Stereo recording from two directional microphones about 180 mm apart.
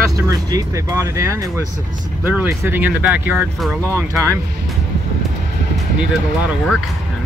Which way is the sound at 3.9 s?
15° right (ahead or behind).